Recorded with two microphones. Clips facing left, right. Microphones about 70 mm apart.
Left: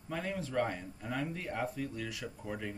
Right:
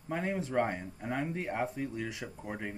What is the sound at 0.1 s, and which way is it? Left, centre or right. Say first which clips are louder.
Speech: right 4 dB; right.